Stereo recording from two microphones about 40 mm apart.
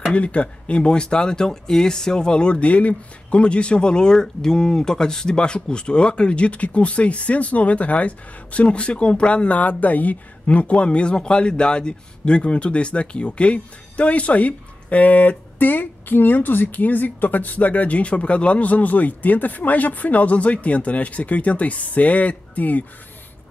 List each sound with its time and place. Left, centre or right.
0.1 s speech: left